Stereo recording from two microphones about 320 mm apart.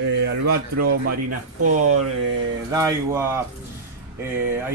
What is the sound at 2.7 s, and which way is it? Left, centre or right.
Speech, centre.